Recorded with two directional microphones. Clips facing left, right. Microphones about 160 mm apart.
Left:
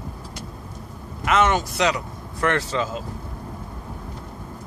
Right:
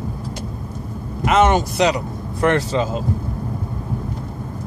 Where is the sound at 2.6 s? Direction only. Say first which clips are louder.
Right 5 dB; 30° right (ahead or behind).